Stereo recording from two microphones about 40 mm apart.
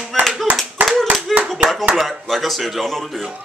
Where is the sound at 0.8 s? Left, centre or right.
Right.